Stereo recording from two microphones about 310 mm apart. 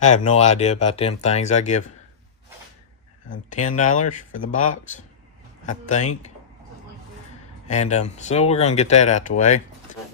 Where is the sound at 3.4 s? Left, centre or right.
Left.